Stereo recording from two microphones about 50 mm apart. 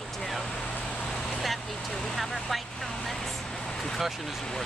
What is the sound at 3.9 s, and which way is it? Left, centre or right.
Speech, centre.